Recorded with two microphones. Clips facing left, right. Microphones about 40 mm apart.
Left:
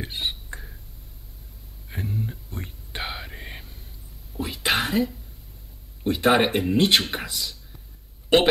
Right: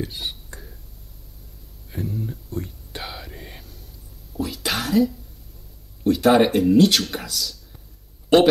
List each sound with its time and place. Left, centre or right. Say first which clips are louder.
0.0 s speech: even; left
1.9 s whispering: right 2 dB; left
6.0 s speech: right 4 dB; left